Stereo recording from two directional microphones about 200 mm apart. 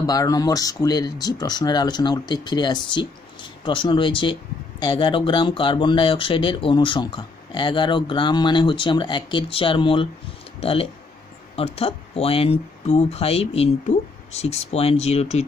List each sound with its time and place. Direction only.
0.0 s speech: 20° left (ahead or behind)